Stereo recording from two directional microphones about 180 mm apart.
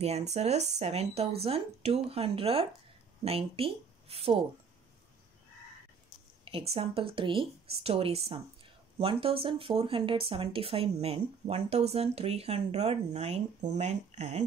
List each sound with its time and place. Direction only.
0.0 s speech: 35° right (ahead or behind)
6.4 s speech: 35° right (ahead or behind)